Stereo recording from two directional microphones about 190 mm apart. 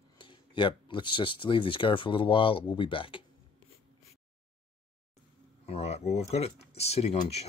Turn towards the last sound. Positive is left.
turn(degrees=35)  # may be behind; listen again after turning